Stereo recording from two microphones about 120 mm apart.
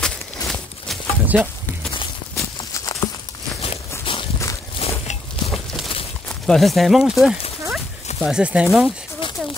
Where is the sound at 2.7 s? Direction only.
30° left (ahead or behind).